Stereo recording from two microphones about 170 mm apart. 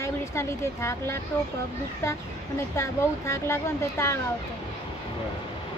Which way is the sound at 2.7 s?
15° left (ahead or behind).